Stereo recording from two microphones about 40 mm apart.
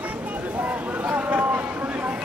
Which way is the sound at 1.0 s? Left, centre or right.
Right.